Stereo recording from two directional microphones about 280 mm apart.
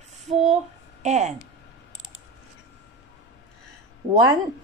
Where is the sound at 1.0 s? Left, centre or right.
Right.